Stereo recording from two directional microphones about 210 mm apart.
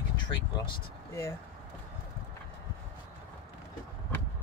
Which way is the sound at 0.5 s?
15° left (ahead or behind).